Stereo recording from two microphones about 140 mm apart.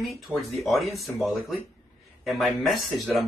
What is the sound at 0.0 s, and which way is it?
Speech, centre (ahead or behind).